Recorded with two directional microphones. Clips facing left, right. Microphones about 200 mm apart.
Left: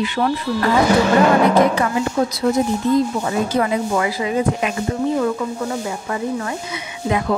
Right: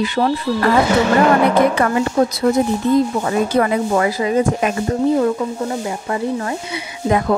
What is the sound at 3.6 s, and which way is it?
Speech, 45° right (ahead or behind).